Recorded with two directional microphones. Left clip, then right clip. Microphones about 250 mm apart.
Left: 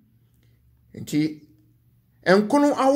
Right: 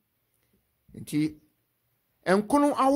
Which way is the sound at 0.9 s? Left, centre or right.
Right.